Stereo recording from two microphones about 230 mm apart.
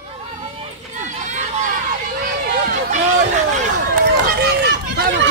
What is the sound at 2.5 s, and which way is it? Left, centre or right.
Run, right.